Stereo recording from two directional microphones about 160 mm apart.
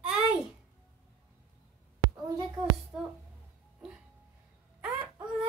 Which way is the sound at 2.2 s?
25° right (ahead or behind).